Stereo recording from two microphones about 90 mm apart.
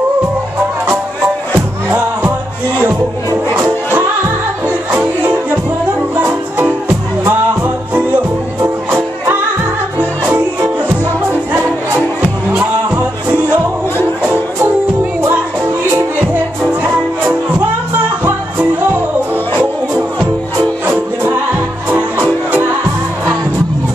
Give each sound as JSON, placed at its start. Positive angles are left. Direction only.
{"t": 1.5, "sound": "music", "side_deg": -15}
{"t": 4.6, "sound": "music", "side_deg": -15}
{"t": 16.6, "sound": "music", "side_deg": -20}